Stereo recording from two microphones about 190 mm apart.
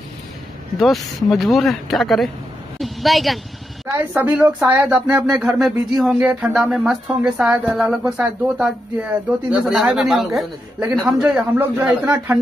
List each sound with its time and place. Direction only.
0.7 s speech: centre (ahead or behind)
2.8 s a sound: centre (ahead or behind)
3.9 s a man's voice: 10° right (ahead or behind)